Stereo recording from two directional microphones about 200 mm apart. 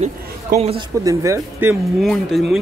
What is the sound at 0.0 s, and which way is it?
Speech, 35° right (ahead or behind).